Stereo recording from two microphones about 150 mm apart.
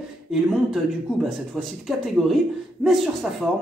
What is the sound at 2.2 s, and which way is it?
Speech, centre (ahead or behind).